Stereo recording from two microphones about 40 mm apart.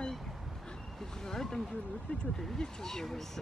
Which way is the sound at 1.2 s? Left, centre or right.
Centre.